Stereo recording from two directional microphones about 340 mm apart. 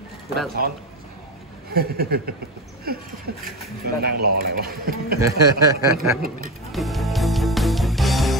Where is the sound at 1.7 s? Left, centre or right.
Right.